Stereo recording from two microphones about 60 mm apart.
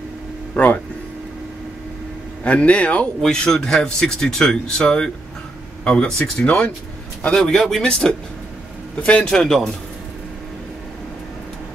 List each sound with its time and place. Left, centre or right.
0.6 s speech: centre
2.4 s speech: left
3.2 s speech: centre